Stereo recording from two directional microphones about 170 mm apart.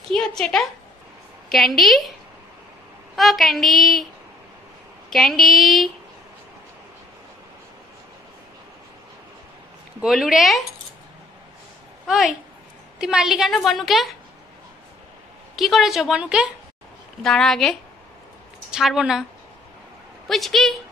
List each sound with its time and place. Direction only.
0.1 s a woman's voice: 5° left (ahead or behind)
3.2 s a woman's voice: centre (ahead or behind)
5.1 s a woman's voice: centre (ahead or behind)
10.0 s a woman's voice: centre (ahead or behind)
12.1 s a woman's voice: 5° right (ahead or behind)
15.5 s a woman's voice: centre (ahead or behind)
20.2 s a woman's voice: centre (ahead or behind)